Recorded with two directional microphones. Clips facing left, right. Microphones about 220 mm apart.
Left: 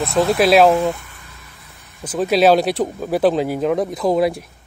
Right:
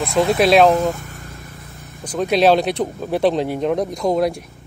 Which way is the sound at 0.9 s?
45° right (ahead or behind).